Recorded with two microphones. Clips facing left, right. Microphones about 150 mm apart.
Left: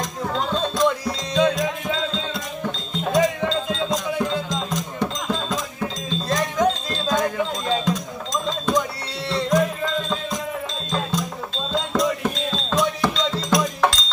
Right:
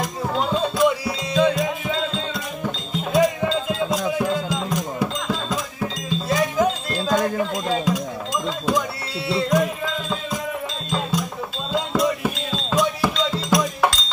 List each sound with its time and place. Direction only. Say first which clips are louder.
0.0 s music: right 2 dB; 10° right (ahead or behind)
7.6 s a sound: right 1 dB; 10° right (ahead or behind)
9.3 s music: even; 5° right (ahead or behind)